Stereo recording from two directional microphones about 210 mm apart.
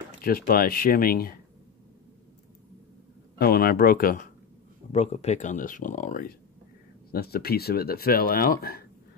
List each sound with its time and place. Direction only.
0.2 s speech: 45° left (ahead or behind)
3.3 s speech: 45° left (ahead or behind)
4.9 s speech: 30° left (ahead or behind)